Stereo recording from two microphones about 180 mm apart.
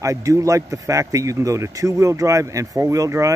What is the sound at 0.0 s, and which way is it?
Speech, 15° right (ahead or behind).